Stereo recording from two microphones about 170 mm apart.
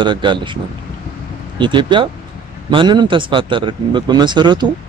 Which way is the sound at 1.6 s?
30° right (ahead or behind).